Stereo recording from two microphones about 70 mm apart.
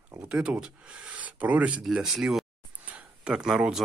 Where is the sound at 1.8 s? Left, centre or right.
Centre.